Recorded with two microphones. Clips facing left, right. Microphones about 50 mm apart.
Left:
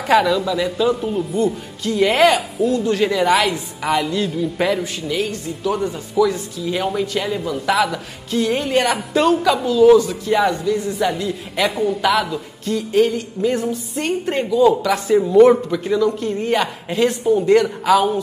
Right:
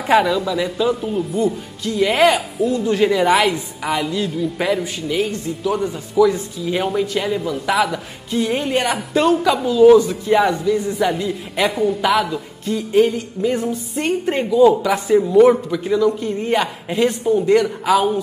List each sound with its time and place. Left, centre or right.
0.0 s a man's voice: centre
5.0 s speech: centre
5.6 s a man's voice: centre
11.7 s a man's voice: centre